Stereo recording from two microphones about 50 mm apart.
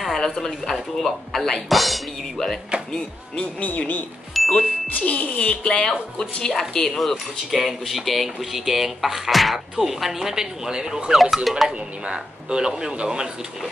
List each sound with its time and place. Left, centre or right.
0.0 s speech: centre
3.5 s speech: left
4.3 s music: centre
4.9 s speech: left; by 11.1 s centre
11.1 s speech: centre
11.7 s speech: right